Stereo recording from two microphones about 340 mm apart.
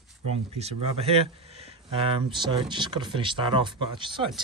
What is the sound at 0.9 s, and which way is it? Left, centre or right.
Speech, centre.